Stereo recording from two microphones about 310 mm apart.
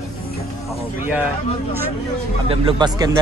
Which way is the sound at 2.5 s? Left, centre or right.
Centre.